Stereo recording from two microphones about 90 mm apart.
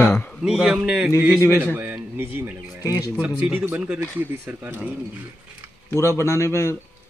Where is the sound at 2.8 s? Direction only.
35° left (ahead or behind).